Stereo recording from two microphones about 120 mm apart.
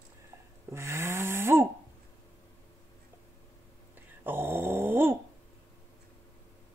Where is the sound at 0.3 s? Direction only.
25° right (ahead or behind).